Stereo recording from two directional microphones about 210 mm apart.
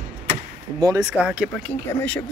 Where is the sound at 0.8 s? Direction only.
15° right (ahead or behind).